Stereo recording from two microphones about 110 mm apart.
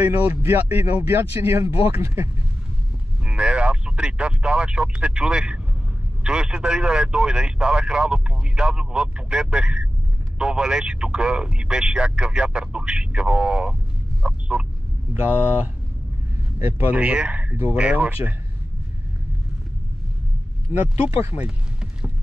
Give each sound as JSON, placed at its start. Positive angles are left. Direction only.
{"t": 0.0, "sound": "speech", "side_deg": -20}
{"t": 3.3, "sound": "speech", "side_deg": -10}
{"t": 14.2, "sound": "chicken", "side_deg": -10}
{"t": 16.5, "sound": "speech", "side_deg": -20}
{"t": 20.9, "sound": "speech", "side_deg": 60}
{"t": 21.2, "sound": "speech", "side_deg": -20}